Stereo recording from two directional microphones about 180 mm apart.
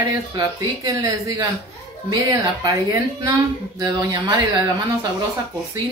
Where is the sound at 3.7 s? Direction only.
20° right (ahead or behind).